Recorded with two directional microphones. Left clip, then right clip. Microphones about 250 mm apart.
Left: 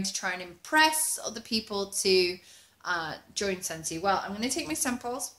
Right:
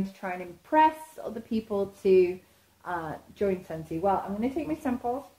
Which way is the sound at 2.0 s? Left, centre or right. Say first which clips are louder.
Right 3 dB; centre.